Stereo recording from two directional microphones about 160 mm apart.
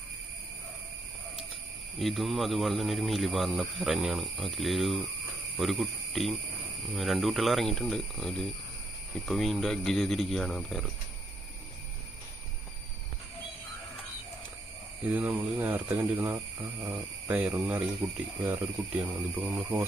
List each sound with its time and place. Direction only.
2.0 s speech: centre (ahead or behind)
15.0 s speech: 10° right (ahead or behind)
18.0 s speech: 15° right (ahead or behind)